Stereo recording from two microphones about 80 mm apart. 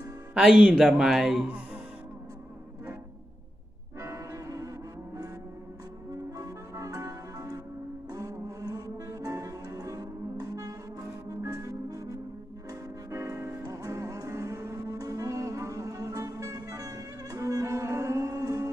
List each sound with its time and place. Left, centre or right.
0.3 s speech: centre
4.0 s music: right
6.3 s music: right
11.2 s organ: right
13.1 s music: right
13.7 s music: right